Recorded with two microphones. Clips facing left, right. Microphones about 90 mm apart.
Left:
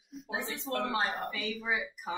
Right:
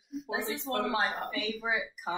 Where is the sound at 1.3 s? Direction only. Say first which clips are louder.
Right 2 dB; 60° right (ahead or behind).